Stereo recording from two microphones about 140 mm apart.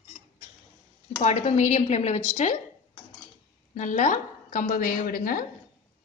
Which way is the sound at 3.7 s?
65° left (ahead or behind).